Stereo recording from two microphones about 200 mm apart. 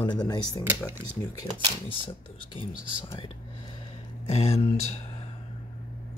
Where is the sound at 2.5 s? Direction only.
25° left (ahead or behind).